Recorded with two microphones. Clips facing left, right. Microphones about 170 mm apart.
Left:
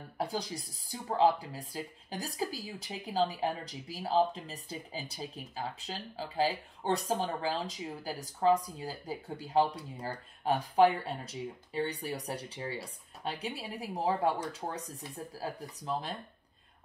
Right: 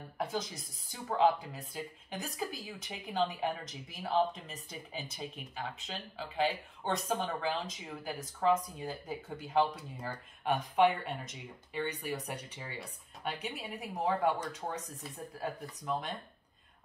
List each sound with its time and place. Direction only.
0.2 s speech: 35° left (ahead or behind)